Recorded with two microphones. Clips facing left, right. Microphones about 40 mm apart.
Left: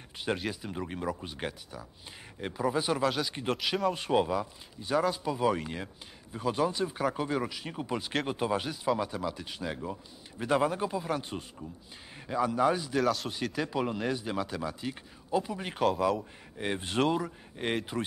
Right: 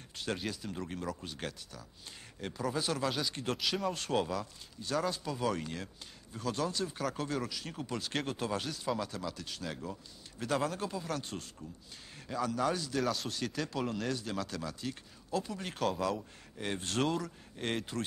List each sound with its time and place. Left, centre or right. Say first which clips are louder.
0.5 s speech: left 3 dB; centre
3.0 s speech: left 5 dB; centre
3.3 s speech: left 3 dB; centre
3.9 s speech: left 5 dB; centre
13.0 s speech: left 6 dB; centre
13.3 s speech: left 4 dB; centre
16.2 s speech: left 5 dB; left